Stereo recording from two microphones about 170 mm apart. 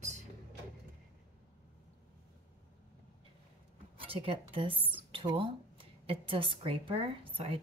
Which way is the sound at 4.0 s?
35° right (ahead or behind).